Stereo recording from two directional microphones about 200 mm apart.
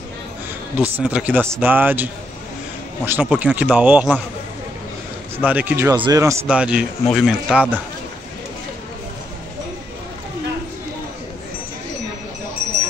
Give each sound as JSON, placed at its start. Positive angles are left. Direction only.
{"t": 0.7, "sound": "speech", "side_deg": -5}
{"t": 3.1, "sound": "speech", "side_deg": -5}
{"t": 5.4, "sound": "speech", "side_deg": -10}
{"t": 6.5, "sound": "speech", "side_deg": -5}